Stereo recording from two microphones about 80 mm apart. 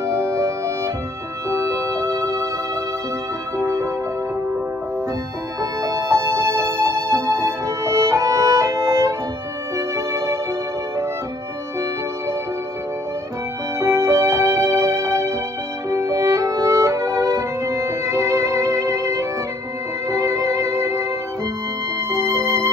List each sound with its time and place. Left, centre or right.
0.0 s music: right
3.5 s music: right
5.6 s music: right
13.7 s music: right
15.9 s violin: right
20.1 s music: right
22.1 s music: right